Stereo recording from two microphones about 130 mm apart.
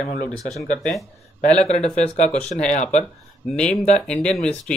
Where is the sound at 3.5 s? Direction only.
5° left (ahead or behind).